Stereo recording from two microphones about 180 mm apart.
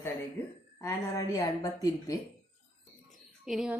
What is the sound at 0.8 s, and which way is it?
A woman's voice, 15° left (ahead or behind).